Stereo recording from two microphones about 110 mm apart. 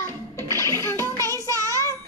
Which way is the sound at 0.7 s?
25° left (ahead or behind).